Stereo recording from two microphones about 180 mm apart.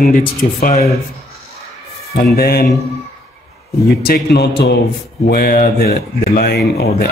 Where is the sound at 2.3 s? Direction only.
55° left (ahead or behind).